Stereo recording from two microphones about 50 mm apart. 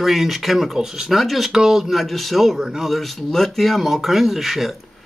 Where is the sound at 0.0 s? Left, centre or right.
Centre.